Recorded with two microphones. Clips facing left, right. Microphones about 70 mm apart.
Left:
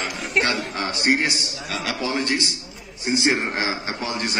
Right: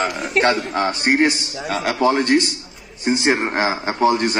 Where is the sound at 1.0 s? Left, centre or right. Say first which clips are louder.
Right 3 dB; right.